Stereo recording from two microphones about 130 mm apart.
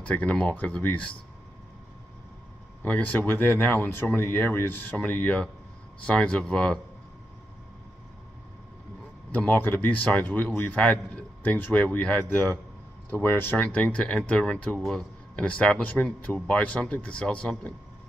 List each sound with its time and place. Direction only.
0.0 s speech: 10° left (ahead or behind)
2.8 s speech: 15° left (ahead or behind)
9.3 s speech: 15° left (ahead or behind)